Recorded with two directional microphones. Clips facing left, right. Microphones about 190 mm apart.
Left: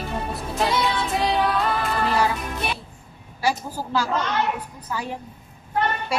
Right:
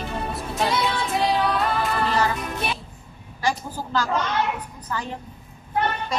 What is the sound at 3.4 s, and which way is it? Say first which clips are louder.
A woman's voice: left 1 dB; 10° left (ahead or behind).